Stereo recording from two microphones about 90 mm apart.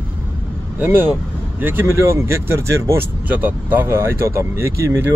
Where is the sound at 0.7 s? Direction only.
25° right (ahead or behind).